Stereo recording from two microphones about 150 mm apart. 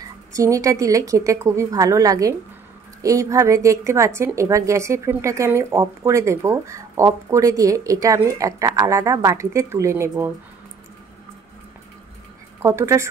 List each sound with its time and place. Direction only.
0.3 s speech: 20° right (ahead or behind)
12.6 s speech: 20° right (ahead or behind)